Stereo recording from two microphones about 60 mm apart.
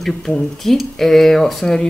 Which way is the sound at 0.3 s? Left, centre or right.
Centre.